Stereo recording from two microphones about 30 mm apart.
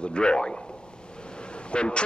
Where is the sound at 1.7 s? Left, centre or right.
Left.